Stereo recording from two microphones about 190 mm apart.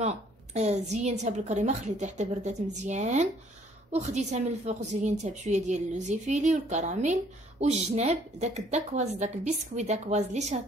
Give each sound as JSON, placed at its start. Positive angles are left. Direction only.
{"t": 0.0, "sound": "a woman's voice", "side_deg": -35}